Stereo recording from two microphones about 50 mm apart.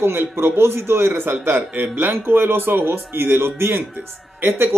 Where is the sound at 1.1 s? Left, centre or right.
Right.